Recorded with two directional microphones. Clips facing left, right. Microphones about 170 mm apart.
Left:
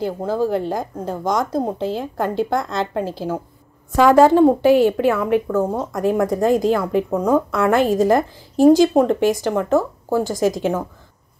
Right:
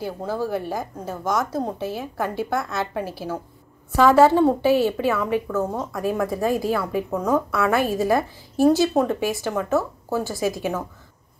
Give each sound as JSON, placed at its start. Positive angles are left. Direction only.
{"t": 0.4, "sound": "a woman's voice", "side_deg": 15}